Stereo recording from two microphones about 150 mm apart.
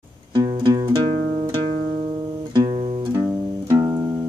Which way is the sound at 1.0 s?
45° right (ahead or behind).